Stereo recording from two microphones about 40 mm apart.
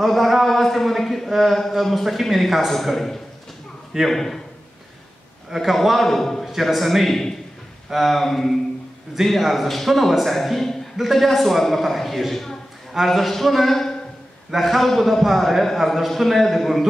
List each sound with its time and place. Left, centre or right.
0.0 s a man's voice: centre
5.5 s a man's voice: centre